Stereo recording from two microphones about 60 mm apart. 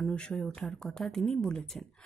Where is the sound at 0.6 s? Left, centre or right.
Centre.